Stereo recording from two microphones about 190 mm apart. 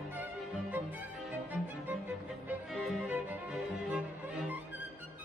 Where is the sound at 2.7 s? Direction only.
Centre (ahead or behind).